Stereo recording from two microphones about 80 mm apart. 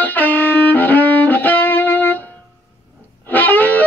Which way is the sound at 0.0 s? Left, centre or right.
Left.